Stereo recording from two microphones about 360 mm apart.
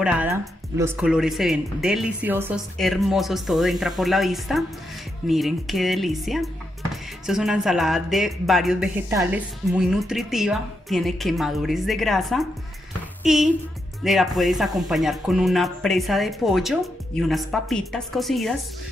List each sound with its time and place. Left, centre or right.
0.0 s a woman's voice: centre